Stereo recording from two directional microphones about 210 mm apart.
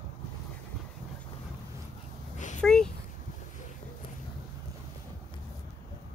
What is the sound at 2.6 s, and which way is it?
Speech, 5° left (ahead or behind).